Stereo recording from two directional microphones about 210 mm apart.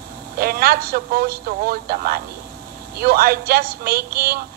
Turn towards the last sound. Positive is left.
turn(degrees=-45)  # may be behind; listen again after turning